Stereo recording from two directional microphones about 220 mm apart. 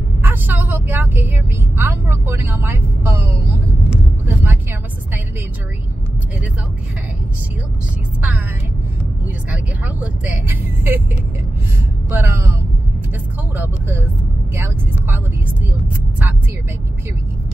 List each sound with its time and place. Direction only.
0.2 s a woman's voice: 10° right (ahead or behind)
9.5 s a woman's voice: 5° right (ahead or behind)
12.1 s a woman's voice: 10° right (ahead or behind)
13.6 s a woman's voice: 10° right (ahead or behind)